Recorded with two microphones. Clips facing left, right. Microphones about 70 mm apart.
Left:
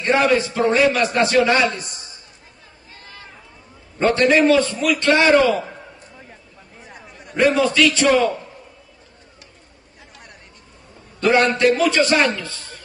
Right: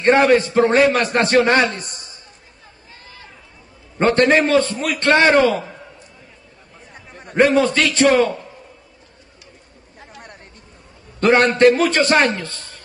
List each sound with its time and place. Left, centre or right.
0.0 s a man's voice: right
4.0 s a man's voice: right
7.2 s a man's voice: right
9.9 s a sound: right
11.1 s a man's voice: right
12.4 s a sound: right